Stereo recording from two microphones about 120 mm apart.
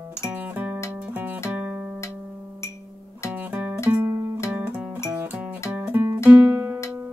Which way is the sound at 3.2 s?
15° right (ahead or behind).